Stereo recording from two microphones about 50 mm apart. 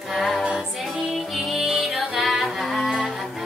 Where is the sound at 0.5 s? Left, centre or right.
Centre.